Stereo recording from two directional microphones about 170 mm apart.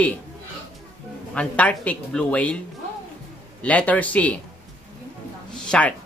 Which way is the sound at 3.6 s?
10° left (ahead or behind).